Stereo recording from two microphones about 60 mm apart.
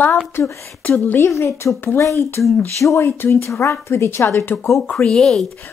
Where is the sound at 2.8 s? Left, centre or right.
Left.